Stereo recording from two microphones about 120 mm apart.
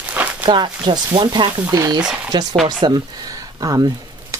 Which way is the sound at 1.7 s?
30° right (ahead or behind).